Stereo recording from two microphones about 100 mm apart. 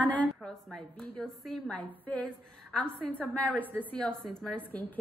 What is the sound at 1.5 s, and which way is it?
A woman's voice, 10° left (ahead or behind).